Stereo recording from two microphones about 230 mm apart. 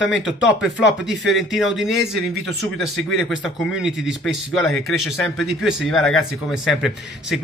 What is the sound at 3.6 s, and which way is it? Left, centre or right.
A man's voice, centre.